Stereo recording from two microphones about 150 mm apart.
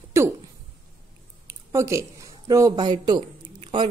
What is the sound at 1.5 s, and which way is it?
Speech, 20° right (ahead or behind).